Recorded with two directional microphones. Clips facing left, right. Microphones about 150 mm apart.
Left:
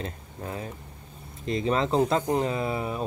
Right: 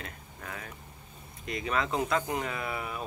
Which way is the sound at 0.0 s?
30° left (ahead or behind).